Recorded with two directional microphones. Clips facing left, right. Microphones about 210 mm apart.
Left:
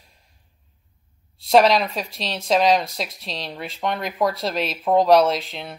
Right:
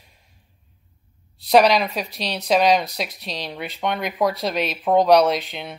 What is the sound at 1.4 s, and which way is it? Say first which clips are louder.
Speech: even; centre (ahead or behind).